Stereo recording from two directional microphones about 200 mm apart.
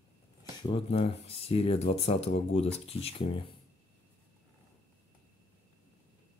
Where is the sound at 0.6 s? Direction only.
25° left (ahead or behind).